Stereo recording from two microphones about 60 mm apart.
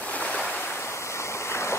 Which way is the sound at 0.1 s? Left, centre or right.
Centre.